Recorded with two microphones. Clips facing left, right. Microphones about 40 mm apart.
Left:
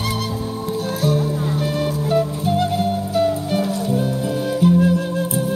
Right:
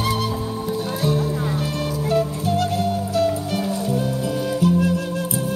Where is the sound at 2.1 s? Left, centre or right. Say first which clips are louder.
Left 1 dB; centre.